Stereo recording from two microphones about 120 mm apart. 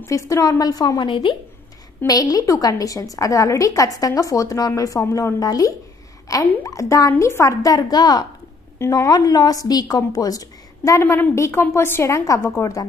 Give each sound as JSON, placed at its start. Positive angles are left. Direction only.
{"t": 0.0, "sound": "a woman's voice", "side_deg": 25}
{"t": 2.0, "sound": "a woman's voice", "side_deg": 30}
{"t": 8.7, "sound": "a woman's voice", "side_deg": 25}